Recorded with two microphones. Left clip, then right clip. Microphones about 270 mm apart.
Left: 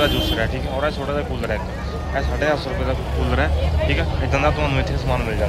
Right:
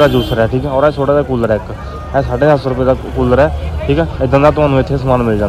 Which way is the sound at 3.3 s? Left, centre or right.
Centre.